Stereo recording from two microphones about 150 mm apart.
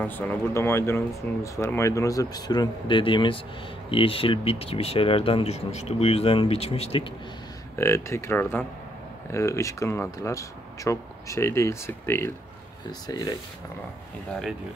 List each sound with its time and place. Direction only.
0.0 s speech: 10° left (ahead or behind); by 7.1 s 40° left (ahead or behind)
7.7 s speech: 15° left (ahead or behind)